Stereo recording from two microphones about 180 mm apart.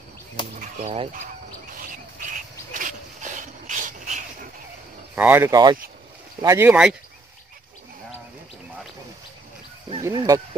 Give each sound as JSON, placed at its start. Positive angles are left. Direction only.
{"t": 0.6, "sound": "speech", "side_deg": -40}
{"t": 1.8, "sound": "frog", "side_deg": -50}
{"t": 2.7, "sound": "a sound", "side_deg": -45}
{"t": 5.1, "sound": "speech", "side_deg": -10}
{"t": 10.0, "sound": "speech", "side_deg": -20}